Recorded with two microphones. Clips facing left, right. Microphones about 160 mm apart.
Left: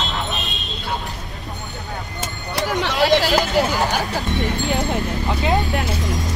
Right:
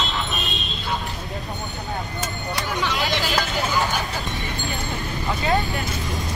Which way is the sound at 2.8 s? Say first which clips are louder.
Left 9 dB; 70° left (ahead or behind).